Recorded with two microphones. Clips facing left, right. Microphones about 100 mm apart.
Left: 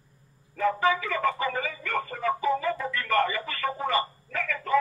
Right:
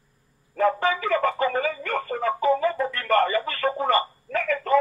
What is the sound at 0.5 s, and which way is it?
Music, 50° right (ahead or behind).